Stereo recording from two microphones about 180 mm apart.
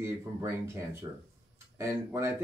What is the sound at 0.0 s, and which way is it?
Speech, 15° right (ahead or behind).